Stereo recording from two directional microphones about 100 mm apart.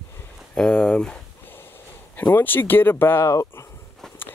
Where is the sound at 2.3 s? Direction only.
20° left (ahead or behind).